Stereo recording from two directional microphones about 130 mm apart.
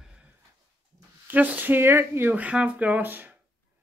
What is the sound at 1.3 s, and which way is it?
Speech, 15° right (ahead or behind).